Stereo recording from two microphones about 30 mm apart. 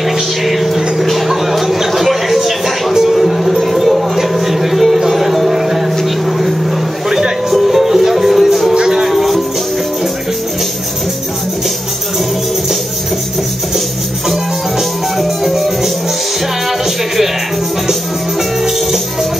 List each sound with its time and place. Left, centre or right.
0.5 s vehicle: centre
1.0 s a sound: centre
3.1 s music: centre
7.1 s music: centre
7.5 s music: centre
8.7 s music: right
9.0 s music: centre
14.3 s music: centre